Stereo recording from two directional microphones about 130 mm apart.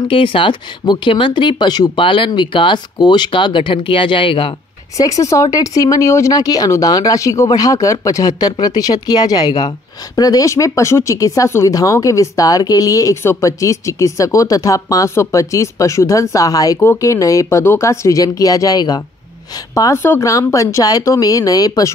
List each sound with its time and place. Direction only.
0.1 s speech: 40° left (ahead or behind)
4.9 s speech: 25° left (ahead or behind)